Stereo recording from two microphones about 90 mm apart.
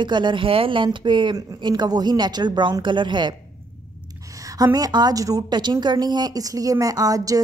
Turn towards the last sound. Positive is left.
turn(degrees=-40)  # may be behind; listen again after turning